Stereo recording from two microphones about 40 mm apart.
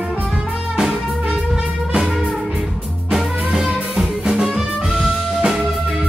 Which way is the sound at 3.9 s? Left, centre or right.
Right.